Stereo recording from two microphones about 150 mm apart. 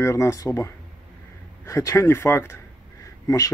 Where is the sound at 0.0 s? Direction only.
20° left (ahead or behind).